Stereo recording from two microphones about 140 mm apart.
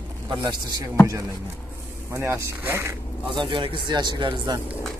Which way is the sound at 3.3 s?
35° right (ahead or behind).